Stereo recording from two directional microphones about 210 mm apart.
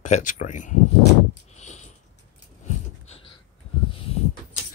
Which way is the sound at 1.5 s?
35° left (ahead or behind).